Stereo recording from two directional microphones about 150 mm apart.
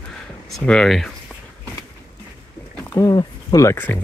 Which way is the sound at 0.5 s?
5° left (ahead or behind).